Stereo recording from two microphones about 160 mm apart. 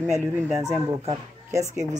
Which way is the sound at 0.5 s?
20° right (ahead or behind).